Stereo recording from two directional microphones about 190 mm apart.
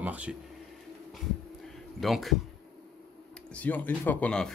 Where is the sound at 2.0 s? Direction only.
Centre (ahead or behind).